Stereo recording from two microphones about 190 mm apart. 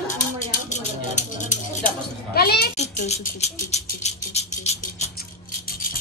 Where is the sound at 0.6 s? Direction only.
40° left (ahead or behind).